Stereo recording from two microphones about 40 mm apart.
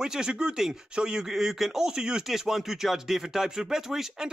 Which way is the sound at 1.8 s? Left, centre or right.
Centre.